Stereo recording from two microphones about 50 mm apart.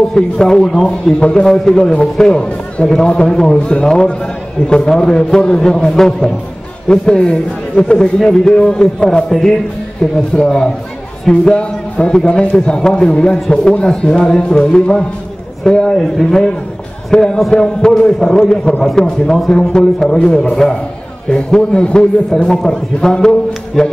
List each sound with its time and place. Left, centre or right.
0.1 s a man's voice: centre